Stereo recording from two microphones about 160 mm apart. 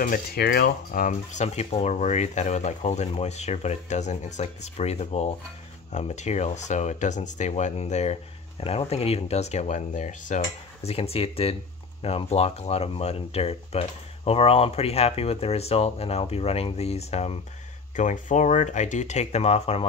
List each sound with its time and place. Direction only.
0.0 s speech: 65° left (ahead or behind); by 17.4 s 40° left (ahead or behind)
17.9 s speech: 50° left (ahead or behind)